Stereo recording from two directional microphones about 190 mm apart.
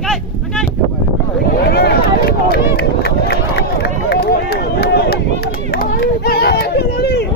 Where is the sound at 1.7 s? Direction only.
55° left (ahead or behind).